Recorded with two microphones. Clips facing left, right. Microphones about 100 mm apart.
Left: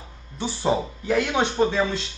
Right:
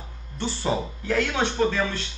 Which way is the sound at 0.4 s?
10° left (ahead or behind).